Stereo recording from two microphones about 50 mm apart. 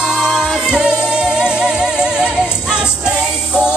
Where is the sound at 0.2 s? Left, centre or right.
Centre.